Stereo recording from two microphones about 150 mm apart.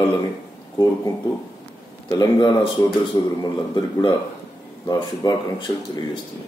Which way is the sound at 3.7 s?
30° left (ahead or behind).